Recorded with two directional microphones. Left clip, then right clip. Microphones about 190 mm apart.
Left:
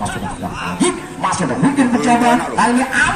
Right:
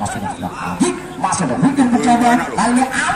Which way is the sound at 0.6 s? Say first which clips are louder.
Left 1 dB; 40° right (ahead or behind).